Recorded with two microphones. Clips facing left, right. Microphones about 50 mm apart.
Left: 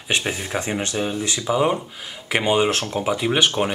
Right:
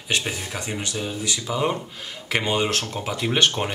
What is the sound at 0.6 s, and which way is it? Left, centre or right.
Speech, left.